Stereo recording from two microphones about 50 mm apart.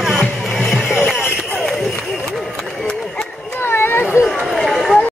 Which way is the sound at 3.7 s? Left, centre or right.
Left.